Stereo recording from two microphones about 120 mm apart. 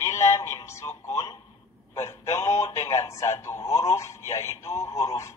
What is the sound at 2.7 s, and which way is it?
Radio, 25° left (ahead or behind).